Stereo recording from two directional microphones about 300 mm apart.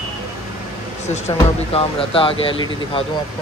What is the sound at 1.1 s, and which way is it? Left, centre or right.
Speech, centre.